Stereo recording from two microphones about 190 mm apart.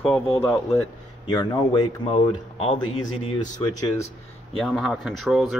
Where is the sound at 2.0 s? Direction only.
30° left (ahead or behind).